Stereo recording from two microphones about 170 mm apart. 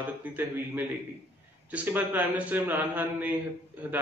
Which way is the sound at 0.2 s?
10° right (ahead or behind).